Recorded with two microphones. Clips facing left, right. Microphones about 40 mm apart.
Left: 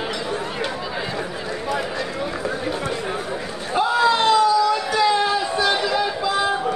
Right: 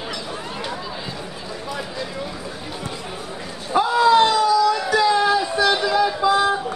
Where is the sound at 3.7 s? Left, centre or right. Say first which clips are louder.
Right 3 dB; left.